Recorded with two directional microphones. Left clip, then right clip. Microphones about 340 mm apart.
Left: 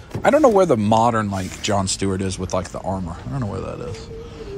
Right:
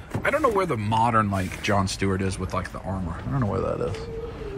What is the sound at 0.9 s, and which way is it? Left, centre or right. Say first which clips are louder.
Speech: left 4 dB; centre.